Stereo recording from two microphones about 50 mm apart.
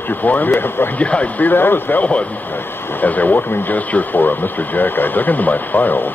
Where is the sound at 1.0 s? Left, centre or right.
Left.